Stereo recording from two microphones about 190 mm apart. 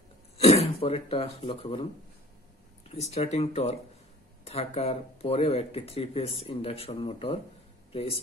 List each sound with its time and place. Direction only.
0.4 s speech: 35° left (ahead or behind)
2.9 s speech: 35° left (ahead or behind)